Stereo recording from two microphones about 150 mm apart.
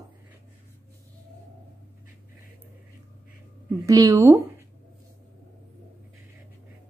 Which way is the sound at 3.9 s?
20° right (ahead or behind).